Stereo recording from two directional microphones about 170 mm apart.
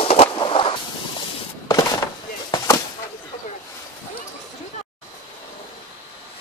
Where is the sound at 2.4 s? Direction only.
20° left (ahead or behind).